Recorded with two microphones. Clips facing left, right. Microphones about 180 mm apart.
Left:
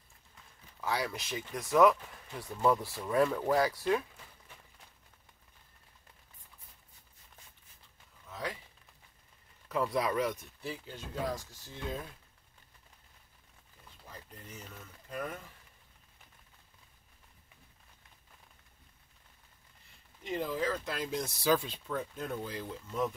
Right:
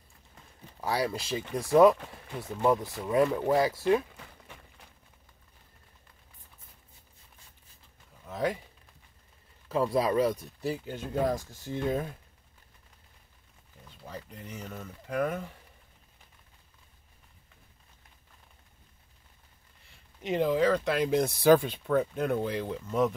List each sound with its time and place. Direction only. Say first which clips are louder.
0.7 s speech: right 5 dB; 35° right (ahead or behind)
4.5 s a sound: right 6 dB; 75° right (ahead or behind)
8.3 s a sound: right 9 dB; 50° right (ahead or behind)
9.7 s speech: right 5 dB; 30° right (ahead or behind)
10.9 s speech: right 7 dB; 55° right (ahead or behind)
14.0 s speech: right 8 dB; 70° right (ahead or behind)
20.2 s speech: right 8 dB; 75° right (ahead or behind)